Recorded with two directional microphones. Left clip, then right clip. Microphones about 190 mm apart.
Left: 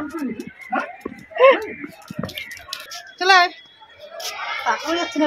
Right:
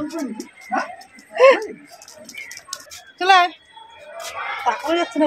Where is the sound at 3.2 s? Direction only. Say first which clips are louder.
Even; 5° left (ahead or behind).